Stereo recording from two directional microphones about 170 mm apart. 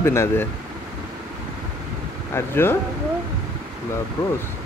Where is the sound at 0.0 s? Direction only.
15° left (ahead or behind).